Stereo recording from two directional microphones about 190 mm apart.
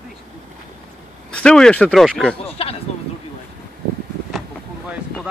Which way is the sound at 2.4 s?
30° left (ahead or behind).